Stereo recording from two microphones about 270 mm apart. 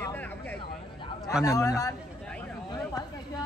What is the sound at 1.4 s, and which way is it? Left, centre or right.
Speech, centre.